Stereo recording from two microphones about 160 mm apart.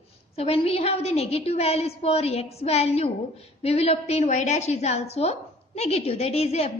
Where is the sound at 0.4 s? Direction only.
40° left (ahead or behind).